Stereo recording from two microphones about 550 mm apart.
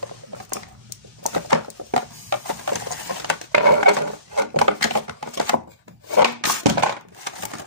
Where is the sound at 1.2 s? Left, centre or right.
Right.